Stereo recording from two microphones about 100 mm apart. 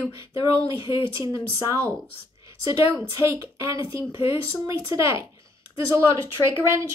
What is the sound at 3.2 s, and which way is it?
A woman's voice, 30° right (ahead or behind).